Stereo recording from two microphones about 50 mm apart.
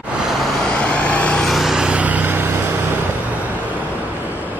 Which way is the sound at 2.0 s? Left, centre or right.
Right.